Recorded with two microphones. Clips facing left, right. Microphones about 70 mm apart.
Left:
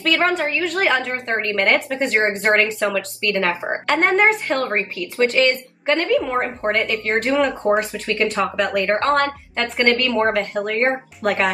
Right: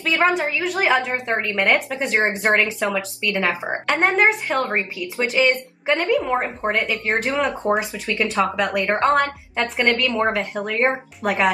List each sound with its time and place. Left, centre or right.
0.0 s a woman's voice: centre
8.8 s speech: centre
9.1 s a woman's voice: centre